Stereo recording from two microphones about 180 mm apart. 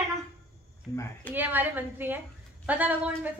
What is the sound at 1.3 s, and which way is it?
A woman's voice, 10° right (ahead or behind).